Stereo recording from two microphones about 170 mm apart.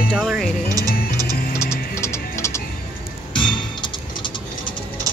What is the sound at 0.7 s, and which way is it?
Music, 20° right (ahead or behind).